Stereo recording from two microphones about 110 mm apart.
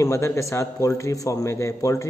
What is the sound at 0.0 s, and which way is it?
A man's voice, 30° left (ahead or behind).